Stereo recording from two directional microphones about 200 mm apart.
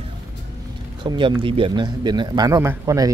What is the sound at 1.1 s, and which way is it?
A man's voice, 25° right (ahead or behind).